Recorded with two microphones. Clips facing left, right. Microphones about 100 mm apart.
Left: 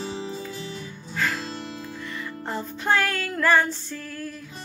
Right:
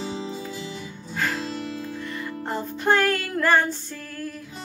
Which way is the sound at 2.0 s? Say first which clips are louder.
Even; 40° right (ahead or behind).